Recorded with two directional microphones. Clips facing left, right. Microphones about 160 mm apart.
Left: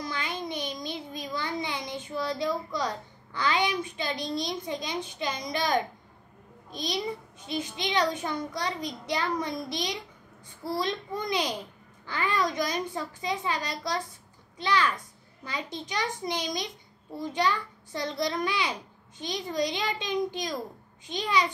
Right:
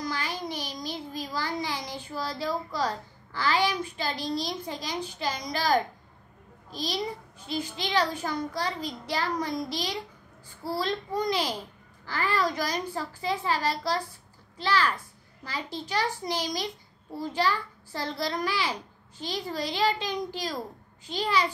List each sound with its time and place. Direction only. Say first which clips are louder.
0.0 s child singing: right 1 dB; 25° left (ahead or behind)
0.8 s a sound: right 1 dB; 20° left (ahead or behind)
3.3 s a child's voice: right 1 dB; 20° left (ahead or behind)
10.8 s a child's voice: right 3 dB; 20° left (ahead or behind)